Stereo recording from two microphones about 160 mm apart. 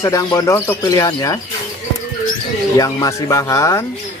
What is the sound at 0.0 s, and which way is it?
Speech, 20° left (ahead or behind).